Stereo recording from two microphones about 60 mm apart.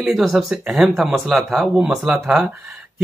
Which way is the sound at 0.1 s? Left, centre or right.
Centre.